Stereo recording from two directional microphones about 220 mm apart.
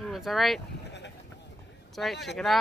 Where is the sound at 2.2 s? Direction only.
Centre (ahead or behind).